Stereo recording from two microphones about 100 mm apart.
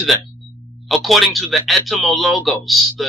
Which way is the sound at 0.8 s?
Centre (ahead or behind).